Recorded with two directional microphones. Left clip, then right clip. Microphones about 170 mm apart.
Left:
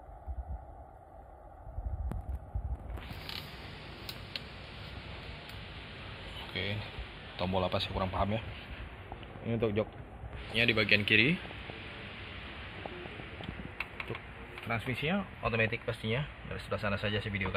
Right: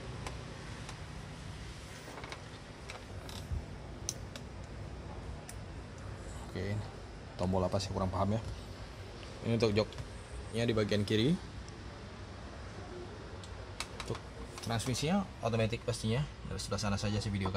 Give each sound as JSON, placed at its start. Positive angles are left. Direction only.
{"t": 6.5, "sound": "speech", "side_deg": -10}
{"t": 7.6, "sound": "speech", "side_deg": 10}
{"t": 9.5, "sound": "speech", "side_deg": -15}
{"t": 14.7, "sound": "speech", "side_deg": -10}